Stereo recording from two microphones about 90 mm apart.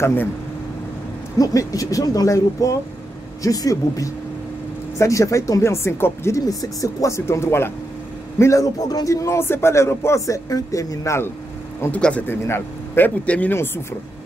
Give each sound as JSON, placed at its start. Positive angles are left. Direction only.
{"t": 0.0, "sound": "speech", "side_deg": 20}
{"t": 1.4, "sound": "speech", "side_deg": 40}
{"t": 6.4, "sound": "speech", "side_deg": 40}
{"t": 11.9, "sound": "speech", "side_deg": 15}
{"t": 12.3, "sound": "speech", "side_deg": 25}